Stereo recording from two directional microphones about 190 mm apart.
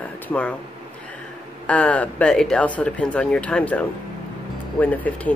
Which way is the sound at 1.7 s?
5° left (ahead or behind).